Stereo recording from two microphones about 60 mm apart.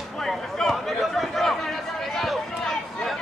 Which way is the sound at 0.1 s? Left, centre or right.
Centre.